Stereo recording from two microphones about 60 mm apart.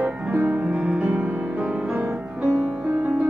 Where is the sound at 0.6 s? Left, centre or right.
Centre.